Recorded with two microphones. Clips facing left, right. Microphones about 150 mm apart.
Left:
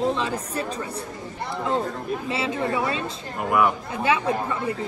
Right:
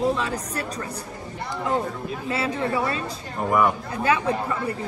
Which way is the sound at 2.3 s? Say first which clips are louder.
Right 2 dB; 25° left (ahead or behind).